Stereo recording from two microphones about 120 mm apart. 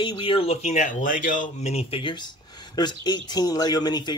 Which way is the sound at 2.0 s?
40° left (ahead or behind).